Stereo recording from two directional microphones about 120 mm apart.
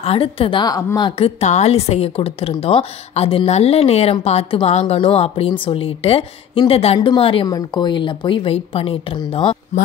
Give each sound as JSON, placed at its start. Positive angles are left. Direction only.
{"t": 0.0, "sound": "a woman's voice", "side_deg": 50}
{"t": 1.1, "sound": "a woman's voice", "side_deg": 60}
{"t": 7.0, "sound": "a woman's voice", "side_deg": 45}
{"t": 7.4, "sound": "a woman's voice", "side_deg": 35}